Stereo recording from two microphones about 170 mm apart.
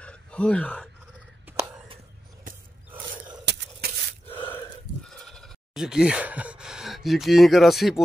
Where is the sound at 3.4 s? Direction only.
90° right.